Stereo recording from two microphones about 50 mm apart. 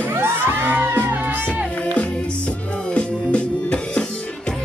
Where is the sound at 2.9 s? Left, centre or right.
Left.